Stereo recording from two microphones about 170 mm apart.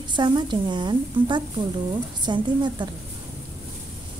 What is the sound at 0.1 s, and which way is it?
A woman's voice, 25° right (ahead or behind).